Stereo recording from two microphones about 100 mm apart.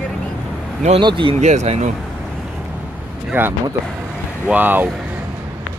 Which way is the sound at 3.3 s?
20° right (ahead or behind).